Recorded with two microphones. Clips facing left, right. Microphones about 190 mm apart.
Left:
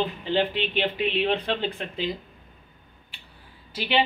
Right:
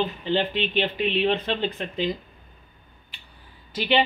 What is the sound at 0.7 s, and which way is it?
Speech, 10° left (ahead or behind).